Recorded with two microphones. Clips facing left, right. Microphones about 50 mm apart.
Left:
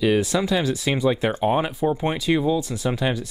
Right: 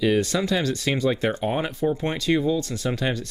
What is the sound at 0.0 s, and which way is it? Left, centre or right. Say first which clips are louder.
Speech: left 1 dB; centre.